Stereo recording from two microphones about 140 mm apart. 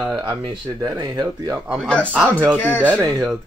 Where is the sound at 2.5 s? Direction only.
15° left (ahead or behind).